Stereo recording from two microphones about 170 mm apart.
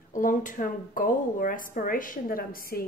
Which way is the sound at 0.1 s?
50° left (ahead or behind).